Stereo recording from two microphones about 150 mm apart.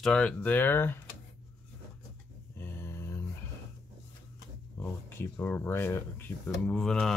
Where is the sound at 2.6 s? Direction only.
15° left (ahead or behind).